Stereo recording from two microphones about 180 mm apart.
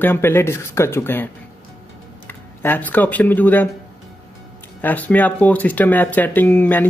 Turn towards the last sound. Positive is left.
turn(degrees=10)  # may be behind; listen again after turning